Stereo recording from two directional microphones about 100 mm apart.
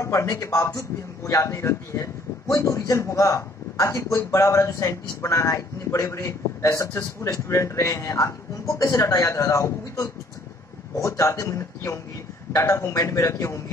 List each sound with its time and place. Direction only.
0.0 s a man's voice: 30° left (ahead or behind)